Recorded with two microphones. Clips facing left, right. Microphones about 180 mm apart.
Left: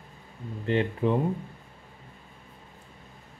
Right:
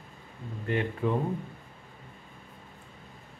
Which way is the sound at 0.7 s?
25° left (ahead or behind).